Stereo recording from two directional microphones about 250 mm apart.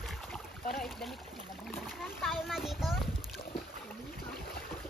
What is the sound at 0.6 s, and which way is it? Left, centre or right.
Boat, centre.